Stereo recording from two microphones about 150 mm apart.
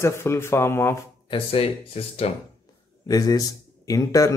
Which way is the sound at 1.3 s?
40° left (ahead or behind).